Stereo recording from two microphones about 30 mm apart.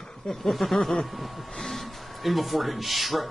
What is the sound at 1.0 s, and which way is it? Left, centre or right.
A man's voice, centre.